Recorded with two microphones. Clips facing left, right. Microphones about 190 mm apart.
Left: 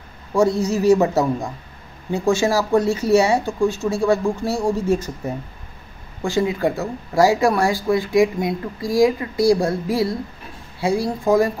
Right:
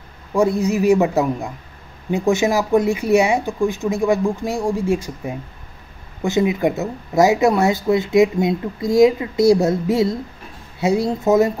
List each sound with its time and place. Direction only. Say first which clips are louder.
0.3 s speech: right 1 dB; 15° right (ahead or behind)